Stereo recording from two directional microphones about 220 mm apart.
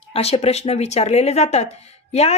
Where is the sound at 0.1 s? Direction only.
25° left (ahead or behind).